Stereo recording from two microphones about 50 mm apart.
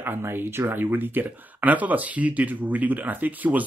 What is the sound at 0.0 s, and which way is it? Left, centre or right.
Speech, right.